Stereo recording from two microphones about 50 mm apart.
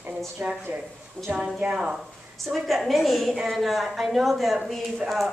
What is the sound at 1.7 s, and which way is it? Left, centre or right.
Speech, centre.